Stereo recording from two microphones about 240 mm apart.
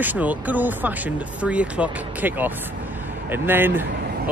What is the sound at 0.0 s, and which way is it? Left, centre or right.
Speech, centre.